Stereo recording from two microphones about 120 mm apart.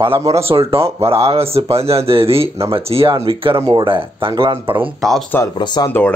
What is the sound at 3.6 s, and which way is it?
Speech, 25° right (ahead or behind).